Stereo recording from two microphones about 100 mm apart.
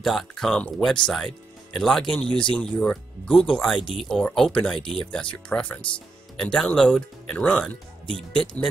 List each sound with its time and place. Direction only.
0.0 s speech: centre (ahead or behind)